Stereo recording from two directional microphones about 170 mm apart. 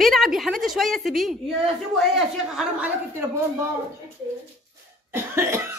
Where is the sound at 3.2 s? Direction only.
15° right (ahead or behind).